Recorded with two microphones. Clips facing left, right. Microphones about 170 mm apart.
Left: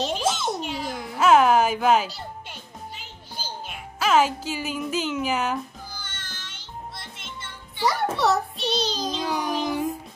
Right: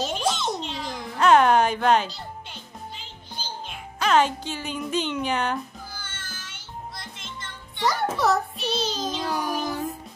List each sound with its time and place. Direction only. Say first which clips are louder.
0.0 s a sound: left 1 dB; centre (ahead or behind)
3.0 s music: even; 5° left (ahead or behind)
6.0 s music: even; 5° right (ahead or behind)
7.7 s music: left 1 dB; centre (ahead or behind)
9.5 s music: left 2 dB; 15° left (ahead or behind)